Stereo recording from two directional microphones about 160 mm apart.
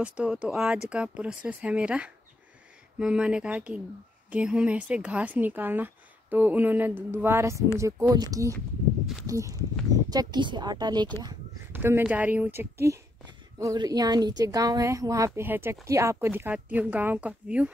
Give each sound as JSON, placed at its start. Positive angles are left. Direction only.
{"t": 0.0, "sound": "speech", "side_deg": -5}